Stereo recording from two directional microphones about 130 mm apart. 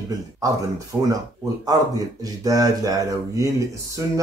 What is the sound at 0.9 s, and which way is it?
Speech, 15° right (ahead or behind).